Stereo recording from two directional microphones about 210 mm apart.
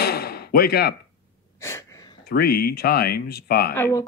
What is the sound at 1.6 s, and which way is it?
Wheeze, 15° left (ahead or behind).